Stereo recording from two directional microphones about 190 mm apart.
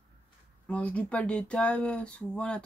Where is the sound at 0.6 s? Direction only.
5° left (ahead or behind).